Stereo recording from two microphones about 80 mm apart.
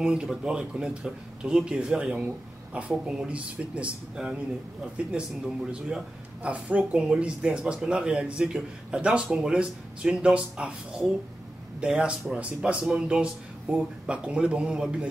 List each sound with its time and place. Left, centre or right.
0.0 s a man's voice: centre